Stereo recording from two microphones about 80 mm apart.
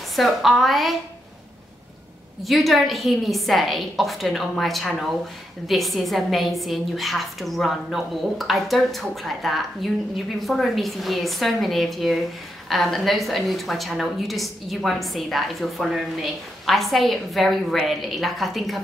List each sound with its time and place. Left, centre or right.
0.1 s a woman's voice: centre
2.4 s a woman's voice: centre